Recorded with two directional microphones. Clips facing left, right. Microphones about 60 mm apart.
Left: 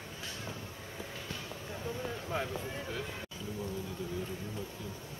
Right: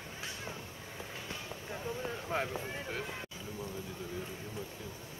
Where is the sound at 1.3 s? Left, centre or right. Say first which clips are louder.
Even; centre.